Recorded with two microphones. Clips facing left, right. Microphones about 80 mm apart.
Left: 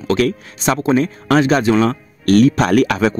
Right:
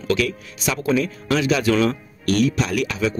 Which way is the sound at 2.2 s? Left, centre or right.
Left.